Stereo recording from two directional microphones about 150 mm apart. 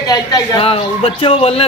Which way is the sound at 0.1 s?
25° left (ahead or behind).